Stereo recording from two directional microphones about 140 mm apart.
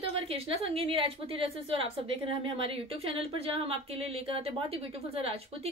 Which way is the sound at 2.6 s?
40° right (ahead or behind).